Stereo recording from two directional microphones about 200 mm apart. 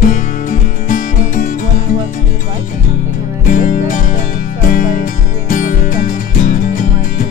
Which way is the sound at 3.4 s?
40° left (ahead or behind).